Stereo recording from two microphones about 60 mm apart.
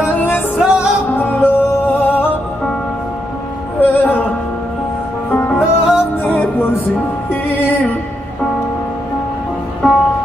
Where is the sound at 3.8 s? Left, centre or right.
Left.